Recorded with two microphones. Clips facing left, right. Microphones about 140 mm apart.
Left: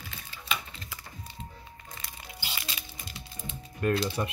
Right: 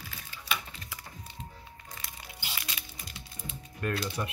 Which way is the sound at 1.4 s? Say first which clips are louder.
Left 1 dB; 10° right (ahead or behind).